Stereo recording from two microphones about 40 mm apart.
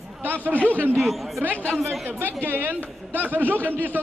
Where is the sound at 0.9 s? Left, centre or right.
Centre.